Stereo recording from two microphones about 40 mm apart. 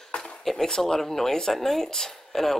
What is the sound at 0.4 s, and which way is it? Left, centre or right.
Speech, centre.